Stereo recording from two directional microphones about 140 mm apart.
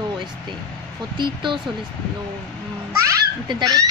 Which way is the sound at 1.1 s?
35° right (ahead or behind).